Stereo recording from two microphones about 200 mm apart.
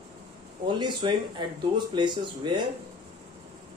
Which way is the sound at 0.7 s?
20° right (ahead or behind).